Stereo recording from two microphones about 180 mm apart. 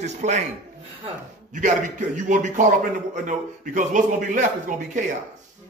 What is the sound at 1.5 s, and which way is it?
A man's voice, 45° right (ahead or behind).